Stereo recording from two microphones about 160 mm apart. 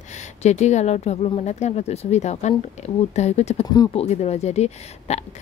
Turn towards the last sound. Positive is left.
turn(degrees=45)  # may be behind; listen again after turning